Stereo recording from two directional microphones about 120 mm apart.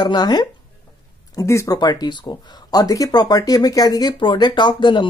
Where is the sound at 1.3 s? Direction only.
25° left (ahead or behind).